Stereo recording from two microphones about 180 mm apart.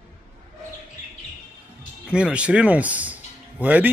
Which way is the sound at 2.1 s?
5° right (ahead or behind).